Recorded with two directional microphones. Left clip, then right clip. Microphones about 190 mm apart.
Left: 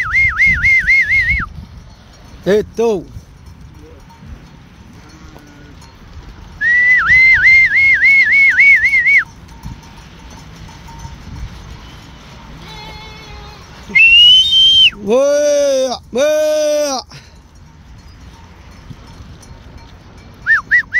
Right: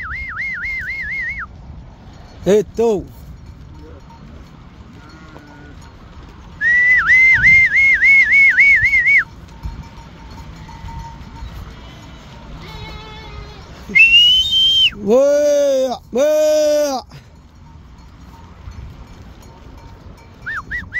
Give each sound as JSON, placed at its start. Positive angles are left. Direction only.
{"t": 0.0, "sound": "whistling", "side_deg": 20}
{"t": 2.4, "sound": "speech", "side_deg": -15}
{"t": 6.6, "sound": "whistling", "side_deg": -25}
{"t": 13.9, "sound": "whistle", "side_deg": -25}
{"t": 20.4, "sound": "dog", "side_deg": 10}